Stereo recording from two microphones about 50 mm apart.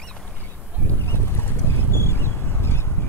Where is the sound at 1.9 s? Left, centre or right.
Left.